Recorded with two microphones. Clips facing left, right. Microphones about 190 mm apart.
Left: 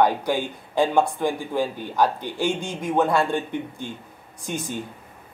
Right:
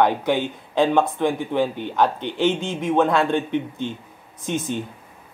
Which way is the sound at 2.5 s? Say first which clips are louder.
Right 4 dB; 20° right (ahead or behind).